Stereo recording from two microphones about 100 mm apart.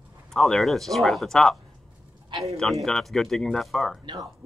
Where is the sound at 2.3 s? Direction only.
30° right (ahead or behind).